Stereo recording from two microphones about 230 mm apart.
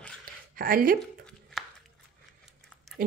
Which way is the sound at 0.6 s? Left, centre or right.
Right.